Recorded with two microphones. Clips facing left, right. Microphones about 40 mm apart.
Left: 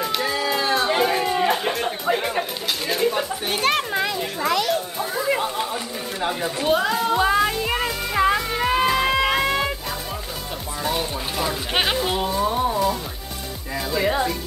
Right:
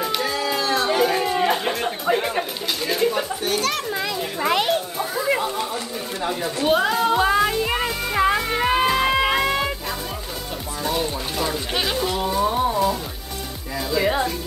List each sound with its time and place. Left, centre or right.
0.0 s a sound: centre
0.7 s music: centre
2.9 s pigeon: centre
3.4 s a child's voice: left
4.0 s children playing: centre
4.9 s a sound: centre
6.6 s speech: centre
8.5 s music: centre
10.8 s speech: centre
11.7 s speech: left
12.0 s speech: centre
12.3 s music: centre
13.9 s music: centre